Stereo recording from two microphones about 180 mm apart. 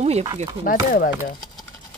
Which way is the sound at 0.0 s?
35° right (ahead or behind).